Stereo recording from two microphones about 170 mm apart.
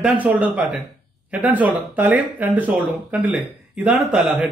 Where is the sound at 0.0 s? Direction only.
10° right (ahead or behind).